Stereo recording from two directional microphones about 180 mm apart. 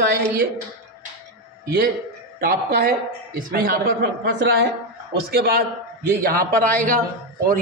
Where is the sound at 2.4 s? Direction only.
60° right (ahead or behind).